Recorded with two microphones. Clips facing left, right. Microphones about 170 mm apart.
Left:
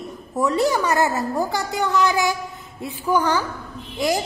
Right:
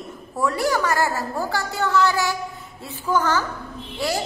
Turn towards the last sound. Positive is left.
turn(degrees=15)  # may be behind; listen again after turning